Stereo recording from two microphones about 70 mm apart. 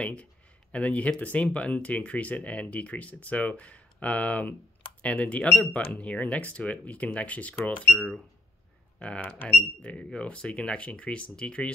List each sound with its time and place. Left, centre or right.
0.0 s a sound: centre
1.2 s speech: centre
9.2 s speech: left